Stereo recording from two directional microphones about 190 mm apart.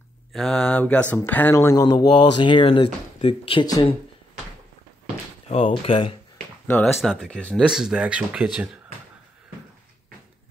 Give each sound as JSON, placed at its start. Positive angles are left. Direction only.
{"t": 0.3, "sound": "speech", "side_deg": 0}
{"t": 5.5, "sound": "speech", "side_deg": 30}
{"t": 6.7, "sound": "speech", "side_deg": 0}